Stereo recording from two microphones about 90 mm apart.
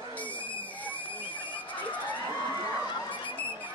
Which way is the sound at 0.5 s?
15° left (ahead or behind).